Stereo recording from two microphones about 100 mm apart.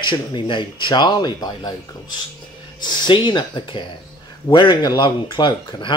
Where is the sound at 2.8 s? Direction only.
50° left (ahead or behind).